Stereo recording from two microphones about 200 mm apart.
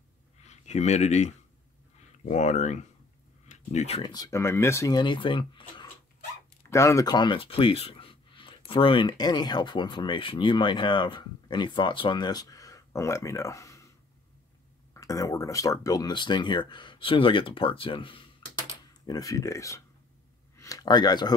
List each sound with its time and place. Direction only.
0.5 s speech: 35° left (ahead or behind)
4.1 s speech: 15° left (ahead or behind)
15.0 s speech: 15° left (ahead or behind)
20.5 s a sound: 15° left (ahead or behind)